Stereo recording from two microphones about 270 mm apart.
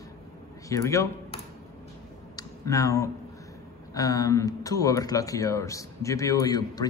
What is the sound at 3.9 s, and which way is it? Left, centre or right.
Speech, centre.